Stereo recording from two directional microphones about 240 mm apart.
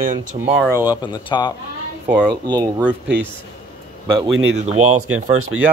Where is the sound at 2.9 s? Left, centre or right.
Centre.